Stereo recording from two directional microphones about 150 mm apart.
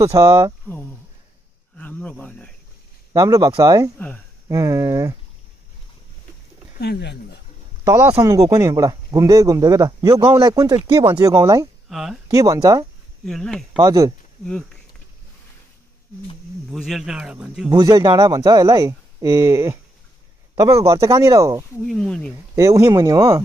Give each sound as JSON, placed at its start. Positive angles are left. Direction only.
{"t": 0.0, "sound": "speech", "side_deg": -20}
{"t": 0.7, "sound": "speech", "side_deg": 15}
{"t": 3.1, "sound": "speech", "side_deg": -25}
{"t": 6.8, "sound": "speech", "side_deg": 90}
{"t": 8.2, "sound": "speech", "side_deg": -20}
{"t": 11.9, "sound": "speech", "side_deg": 0}
{"t": 12.3, "sound": "speech", "side_deg": -25}
{"t": 13.2, "sound": "speech", "side_deg": 5}
{"t": 13.7, "sound": "speech", "side_deg": -25}
{"t": 14.4, "sound": "speech", "side_deg": 5}
{"t": 16.7, "sound": "speech", "side_deg": 0}
{"t": 17.6, "sound": "speech", "side_deg": -25}
{"t": 21.8, "sound": "speech", "side_deg": 5}
{"t": 22.6, "sound": "speech", "side_deg": -20}